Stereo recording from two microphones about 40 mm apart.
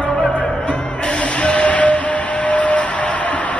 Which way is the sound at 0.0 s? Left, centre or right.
Left.